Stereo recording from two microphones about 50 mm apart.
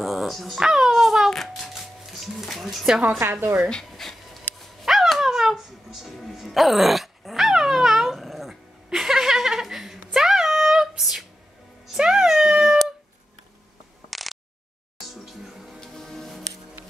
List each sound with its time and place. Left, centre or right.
0.0 s speech: centre
0.6 s a sound: centre
1.5 s music: centre
3.2 s a woman's voice: right
3.6 s dog: centre
6.0 s music: centre
11.9 s cat: centre
14.1 s a sound: centre
15.3 s music: centre
15.8 s music: centre